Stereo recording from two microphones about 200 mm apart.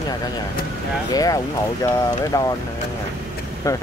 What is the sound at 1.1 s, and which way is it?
Speech, 20° left (ahead or behind).